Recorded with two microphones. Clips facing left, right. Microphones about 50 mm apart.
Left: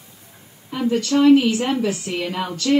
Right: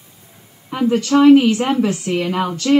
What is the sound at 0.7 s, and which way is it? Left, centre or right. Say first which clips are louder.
A woman's voice: right 4 dB; right.